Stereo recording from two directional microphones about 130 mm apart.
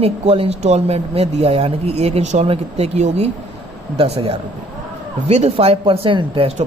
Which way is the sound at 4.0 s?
45° right (ahead or behind).